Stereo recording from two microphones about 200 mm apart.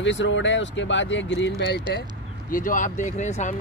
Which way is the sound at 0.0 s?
65° left (ahead or behind).